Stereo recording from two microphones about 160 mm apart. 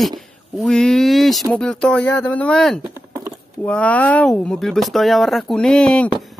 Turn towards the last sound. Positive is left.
turn(degrees=5)  # may be behind; listen again after turning